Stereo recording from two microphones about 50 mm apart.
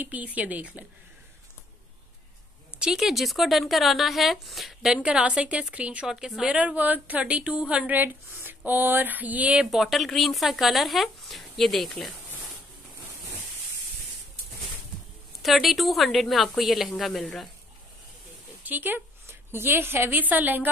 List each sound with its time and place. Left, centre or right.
0.0 s a sound: right
2.8 s speech: centre
4.8 s a woman's voice: centre
6.0 s speech: centre
6.5 s a woman's voice: right
7.9 s a sound: right
9.7 s speech: centre
15.4 s speech: centre
18.6 s speech: right
19.2 s a woman's voice: right
20.1 s a sound: right